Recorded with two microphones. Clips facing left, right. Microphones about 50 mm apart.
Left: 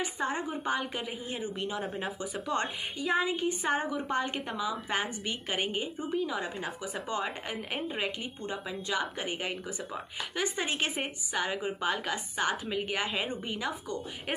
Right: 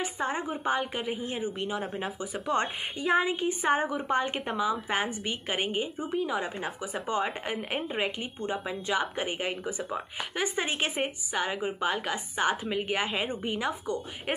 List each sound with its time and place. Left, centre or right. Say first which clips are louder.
0.0 s speech: right 1 dB; centre
2.4 s speech: right 4 dB; right